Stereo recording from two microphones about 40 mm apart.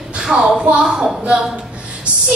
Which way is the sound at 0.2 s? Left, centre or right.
Centre.